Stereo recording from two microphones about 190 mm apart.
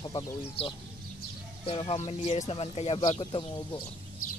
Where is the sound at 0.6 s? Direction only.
30° left (ahead or behind).